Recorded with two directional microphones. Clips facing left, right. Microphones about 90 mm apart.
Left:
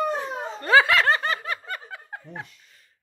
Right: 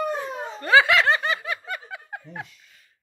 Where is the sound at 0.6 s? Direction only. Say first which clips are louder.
Right 1 dB; 35° left (ahead or behind).